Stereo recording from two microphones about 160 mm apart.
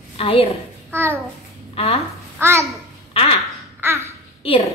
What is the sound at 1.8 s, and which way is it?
Speech, 40° left (ahead or behind).